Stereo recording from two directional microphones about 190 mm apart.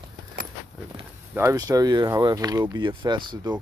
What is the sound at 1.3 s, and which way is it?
Speech, 15° right (ahead or behind).